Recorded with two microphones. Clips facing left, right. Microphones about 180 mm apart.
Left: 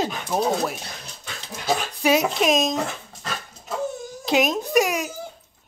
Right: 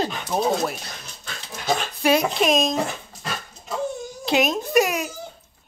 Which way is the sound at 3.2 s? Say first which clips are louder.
Right 1 dB; centre (ahead or behind).